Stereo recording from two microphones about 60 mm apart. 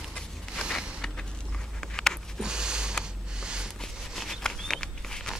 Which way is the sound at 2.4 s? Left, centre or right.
Centre.